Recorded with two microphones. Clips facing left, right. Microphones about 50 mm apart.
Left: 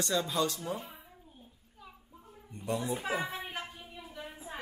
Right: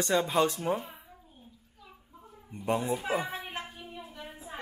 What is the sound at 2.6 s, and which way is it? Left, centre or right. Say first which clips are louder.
Speech: right 4 dB; right.